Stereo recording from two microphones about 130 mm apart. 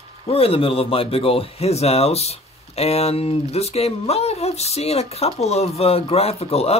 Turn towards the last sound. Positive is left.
turn(degrees=50)  # may be behind; listen again after turning